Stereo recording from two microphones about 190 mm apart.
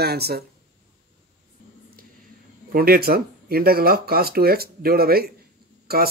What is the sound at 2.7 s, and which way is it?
Speech, 50° right (ahead or behind).